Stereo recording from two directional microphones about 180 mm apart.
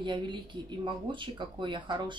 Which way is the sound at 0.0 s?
25° right (ahead or behind).